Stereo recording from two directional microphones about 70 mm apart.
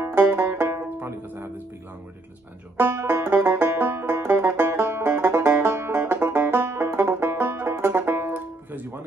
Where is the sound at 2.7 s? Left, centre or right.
Right.